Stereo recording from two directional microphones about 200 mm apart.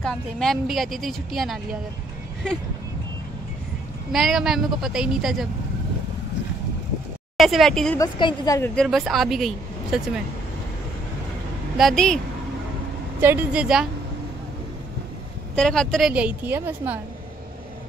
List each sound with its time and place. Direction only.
0.0 s a woman's voice: centre (ahead or behind)
4.1 s a woman's voice: centre (ahead or behind)
7.3 s a woman's voice: centre (ahead or behind)
8.0 s a woman's voice: 20° left (ahead or behind)
8.7 s a woman's voice: centre (ahead or behind)
11.7 s a woman's voice: centre (ahead or behind)
13.2 s a woman's voice: 10° right (ahead or behind)
15.5 s a woman's voice: 5° left (ahead or behind)